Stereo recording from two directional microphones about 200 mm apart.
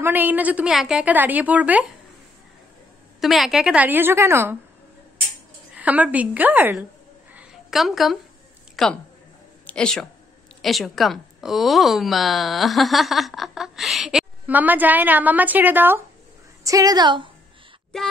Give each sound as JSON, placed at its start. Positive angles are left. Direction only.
{"t": 0.0, "sound": "a woman's voice", "side_deg": -10}
{"t": 3.2, "sound": "a woman's voice", "side_deg": 0}
{"t": 5.8, "sound": "a woman's voice", "side_deg": -5}
{"t": 7.3, "sound": "a sound", "side_deg": 0}
{"t": 8.8, "sound": "a woman's voice", "side_deg": 0}
{"t": 17.9, "sound": "speech", "side_deg": 0}